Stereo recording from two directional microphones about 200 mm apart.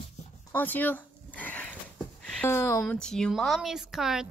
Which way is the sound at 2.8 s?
5° left (ahead or behind).